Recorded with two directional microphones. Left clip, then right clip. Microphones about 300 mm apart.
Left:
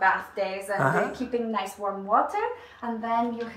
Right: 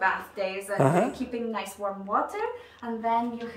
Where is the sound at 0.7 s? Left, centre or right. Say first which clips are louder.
Right 1 dB; right.